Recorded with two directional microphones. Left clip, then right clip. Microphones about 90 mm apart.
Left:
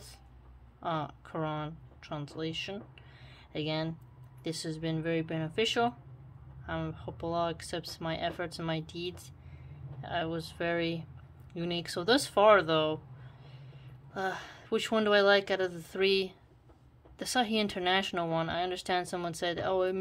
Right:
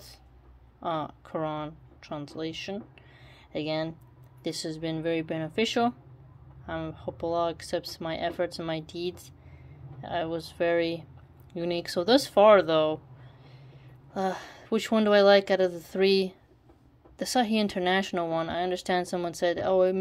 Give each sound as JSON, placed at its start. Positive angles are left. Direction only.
{"t": 0.7, "sound": "speech", "side_deg": -25}
{"t": 6.8, "sound": "speech", "side_deg": -20}
{"t": 14.1, "sound": "speech", "side_deg": -35}
{"t": 18.5, "sound": "speech", "side_deg": -30}